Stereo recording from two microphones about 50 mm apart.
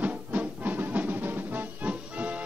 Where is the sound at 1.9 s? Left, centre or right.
Right.